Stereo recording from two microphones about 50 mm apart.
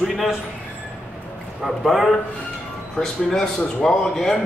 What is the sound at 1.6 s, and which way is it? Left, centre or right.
Speech, centre.